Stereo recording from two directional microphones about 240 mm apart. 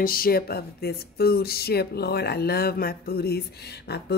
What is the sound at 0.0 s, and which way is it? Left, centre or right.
Speech, left.